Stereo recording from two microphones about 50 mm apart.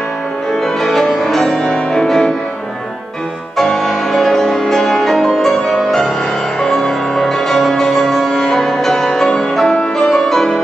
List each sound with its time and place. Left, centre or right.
0.8 s music: centre
3.5 s music: centre